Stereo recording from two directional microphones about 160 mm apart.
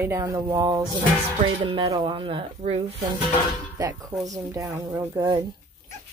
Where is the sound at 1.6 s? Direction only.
35° right (ahead or behind).